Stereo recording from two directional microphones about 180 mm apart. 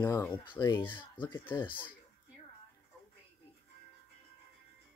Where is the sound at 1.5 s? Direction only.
25° left (ahead or behind).